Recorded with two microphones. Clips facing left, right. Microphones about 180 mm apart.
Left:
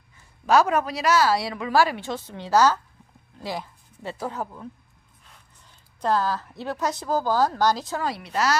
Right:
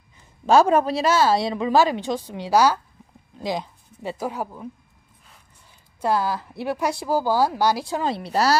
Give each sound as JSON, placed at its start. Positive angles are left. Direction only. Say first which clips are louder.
{"t": 0.5, "sound": "a woman's voice", "louder": "right 4 dB", "side_deg": -30}
{"t": 5.9, "sound": "a woman's voice", "louder": "right 1 dB", "side_deg": -10}
{"t": 8.0, "sound": "a woman's voice", "louder": "right 4 dB", "side_deg": -30}